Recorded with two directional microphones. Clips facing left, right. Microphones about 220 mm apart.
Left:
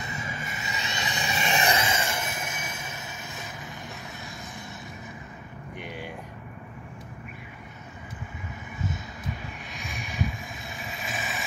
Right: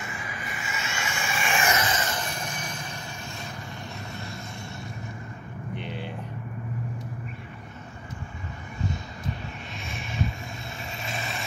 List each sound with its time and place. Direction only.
0.1 s a sound: 25° left (ahead or behind); by 3.0 s 5° left (ahead or behind)
5.8 s vehicle: 10° left (ahead or behind)
9.8 s vehicle: centre (ahead or behind)